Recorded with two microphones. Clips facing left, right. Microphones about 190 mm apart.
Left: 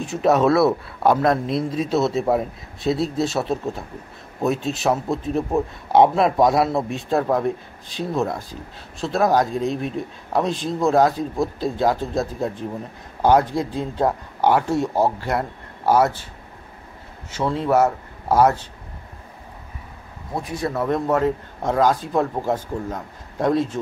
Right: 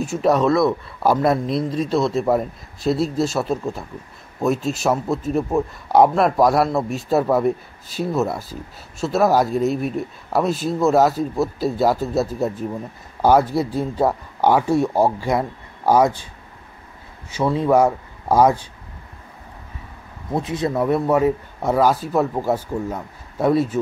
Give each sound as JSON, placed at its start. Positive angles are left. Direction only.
{"t": 0.0, "sound": "speech", "side_deg": 0}
{"t": 17.3, "sound": "speech", "side_deg": -10}
{"t": 20.4, "sound": "speech", "side_deg": -20}